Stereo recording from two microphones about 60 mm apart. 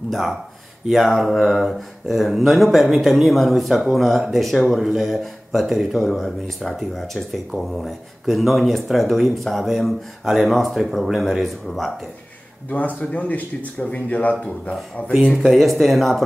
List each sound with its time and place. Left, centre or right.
0.1 s speech: centre
12.6 s speech: left
15.3 s speech: centre